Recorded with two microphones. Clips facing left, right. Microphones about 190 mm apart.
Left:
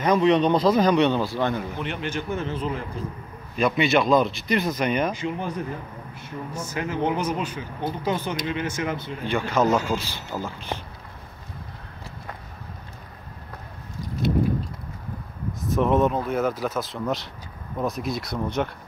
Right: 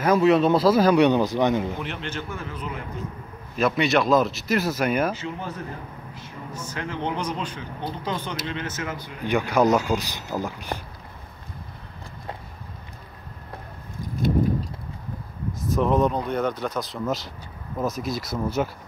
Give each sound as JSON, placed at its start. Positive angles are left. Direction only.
{"t": 0.0, "sound": "a man's voice", "side_deg": -5}
{"t": 2.0, "sound": "speech", "side_deg": 10}
{"t": 2.3, "sound": "a man's voice", "side_deg": 25}
{"t": 3.5, "sound": "speech", "side_deg": 0}
{"t": 5.1, "sound": "speech", "side_deg": 15}
{"t": 6.5, "sound": "speech", "side_deg": 10}
{"t": 9.2, "sound": "a man's voice", "side_deg": -15}
{"t": 15.6, "sound": "speech", "side_deg": 0}